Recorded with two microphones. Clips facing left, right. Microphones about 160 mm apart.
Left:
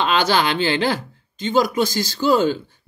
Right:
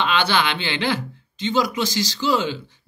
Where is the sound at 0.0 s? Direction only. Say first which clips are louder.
Left 2 dB; 40° left (ahead or behind).